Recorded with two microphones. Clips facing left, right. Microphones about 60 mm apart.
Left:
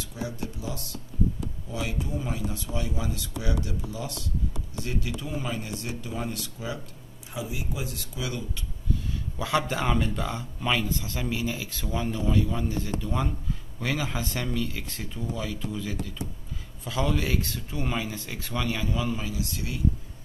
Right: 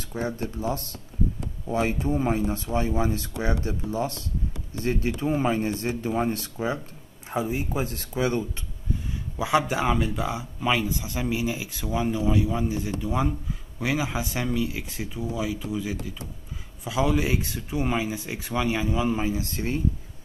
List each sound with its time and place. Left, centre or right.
0.0 s speech: right
9.4 s speech: centre; by 19.8 s right